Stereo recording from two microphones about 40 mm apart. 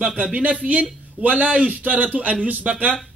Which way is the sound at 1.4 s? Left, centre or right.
Right.